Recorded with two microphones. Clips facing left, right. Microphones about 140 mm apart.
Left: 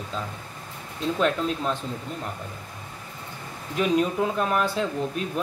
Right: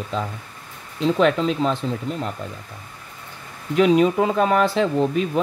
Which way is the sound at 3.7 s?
90° right.